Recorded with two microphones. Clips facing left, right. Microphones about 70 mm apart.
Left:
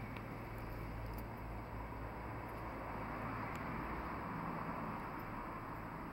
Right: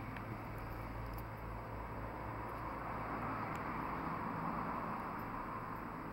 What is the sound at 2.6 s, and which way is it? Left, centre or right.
Vehicle, centre.